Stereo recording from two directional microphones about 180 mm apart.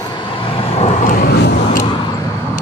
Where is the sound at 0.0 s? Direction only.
25° left (ahead or behind).